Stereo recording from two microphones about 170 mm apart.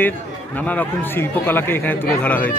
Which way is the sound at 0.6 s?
10° left (ahead or behind).